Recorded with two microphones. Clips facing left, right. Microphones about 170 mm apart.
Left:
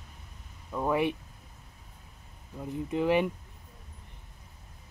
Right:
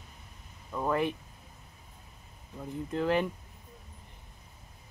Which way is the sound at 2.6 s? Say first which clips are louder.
Left 2 dB; 10° left (ahead or behind).